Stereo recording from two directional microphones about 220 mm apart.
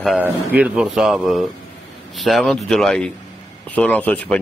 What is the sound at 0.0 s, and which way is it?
Speech, 5° right (ahead or behind).